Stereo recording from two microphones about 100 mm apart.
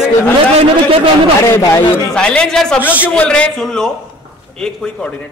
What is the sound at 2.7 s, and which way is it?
A man's voice, 15° left (ahead or behind).